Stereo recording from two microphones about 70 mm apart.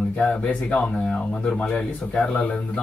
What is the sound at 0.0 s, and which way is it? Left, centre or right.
Speech, left.